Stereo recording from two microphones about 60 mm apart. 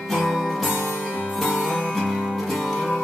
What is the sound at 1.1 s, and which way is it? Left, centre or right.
Music, left.